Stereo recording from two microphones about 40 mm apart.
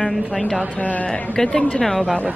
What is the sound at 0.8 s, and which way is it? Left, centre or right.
Speech, left.